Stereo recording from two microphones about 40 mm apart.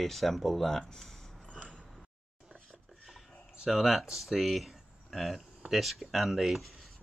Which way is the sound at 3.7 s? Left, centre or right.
Centre.